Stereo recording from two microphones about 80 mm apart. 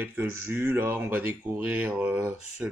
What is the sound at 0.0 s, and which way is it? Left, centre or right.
Speech, right.